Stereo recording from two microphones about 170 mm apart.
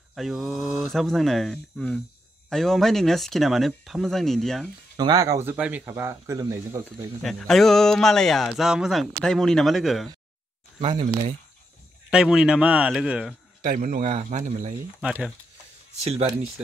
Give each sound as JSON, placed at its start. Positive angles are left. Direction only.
{"t": 0.1, "sound": "speech", "side_deg": 0}
{"t": 4.9, "sound": "speech", "side_deg": -25}
{"t": 7.2, "sound": "speech", "side_deg": 0}
{"t": 10.8, "sound": "speech", "side_deg": -40}
{"t": 12.1, "sound": "speech", "side_deg": -5}
{"t": 13.6, "sound": "a man's voice", "side_deg": -50}
{"t": 14.0, "sound": "speech", "side_deg": -40}
{"t": 15.0, "sound": "speech", "side_deg": -5}
{"t": 16.0, "sound": "speech", "side_deg": -35}